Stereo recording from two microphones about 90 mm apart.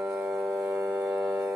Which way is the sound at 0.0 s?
5° right (ahead or behind).